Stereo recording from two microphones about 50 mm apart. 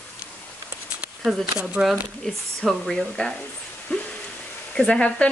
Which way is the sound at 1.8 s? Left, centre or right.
Centre.